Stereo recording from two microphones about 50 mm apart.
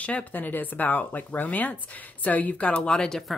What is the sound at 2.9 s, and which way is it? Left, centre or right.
Speech, centre.